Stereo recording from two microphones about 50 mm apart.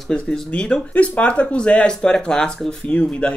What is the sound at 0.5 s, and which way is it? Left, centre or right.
Speech, left.